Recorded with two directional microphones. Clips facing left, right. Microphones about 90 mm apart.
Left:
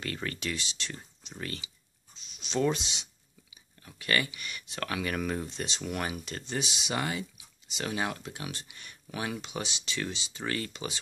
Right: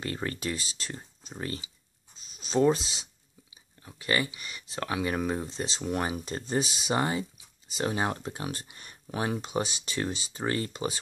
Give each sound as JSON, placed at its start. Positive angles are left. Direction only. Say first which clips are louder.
{"t": 0.0, "sound": "speech", "louder": "right 3 dB", "side_deg": -25}
{"t": 0.4, "sound": "speech", "louder": "right 2 dB", "side_deg": -35}
{"t": 2.3, "sound": "a sound", "louder": "right 4 dB", "side_deg": -40}
{"t": 2.7, "sound": "speech", "louder": "right 5 dB", "side_deg": -35}
{"t": 3.8, "sound": "speech", "louder": "right 1 dB", "side_deg": -25}
{"t": 6.4, "sound": "speech", "louder": "right 6 dB", "side_deg": -40}